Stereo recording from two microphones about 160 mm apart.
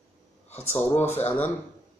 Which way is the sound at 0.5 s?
45° left (ahead or behind).